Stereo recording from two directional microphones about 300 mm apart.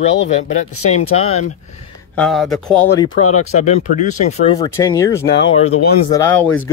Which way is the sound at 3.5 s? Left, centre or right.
Left.